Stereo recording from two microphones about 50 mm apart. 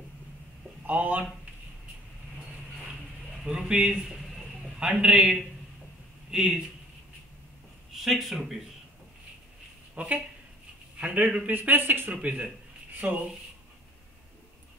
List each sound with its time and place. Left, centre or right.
0.8 s speech: right
3.4 s speech: centre
4.7 s a man's voice: right
7.9 s speech: centre
9.9 s a man's voice: right
12.1 s a man's voice: right